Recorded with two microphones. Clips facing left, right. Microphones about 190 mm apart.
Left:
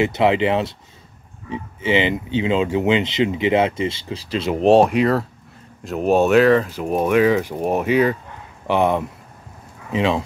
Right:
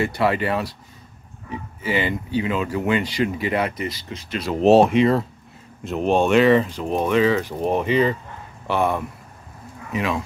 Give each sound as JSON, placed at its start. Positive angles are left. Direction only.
{"t": 0.0, "sound": "speech", "side_deg": 20}
{"t": 4.6, "sound": "speech", "side_deg": 0}